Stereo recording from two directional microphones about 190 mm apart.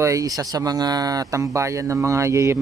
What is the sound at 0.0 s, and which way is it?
Speech, 15° right (ahead or behind).